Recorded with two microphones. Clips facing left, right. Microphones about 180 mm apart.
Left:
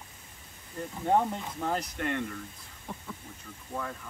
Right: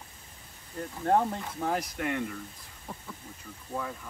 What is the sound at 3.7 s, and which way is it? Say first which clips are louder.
Speech: right 1 dB; 5° right (ahead or behind).